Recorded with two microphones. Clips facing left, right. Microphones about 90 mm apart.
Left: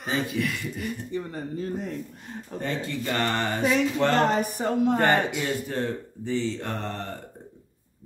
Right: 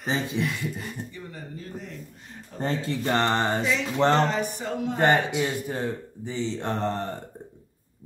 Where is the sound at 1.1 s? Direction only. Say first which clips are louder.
Left 8 dB; 40° left (ahead or behind).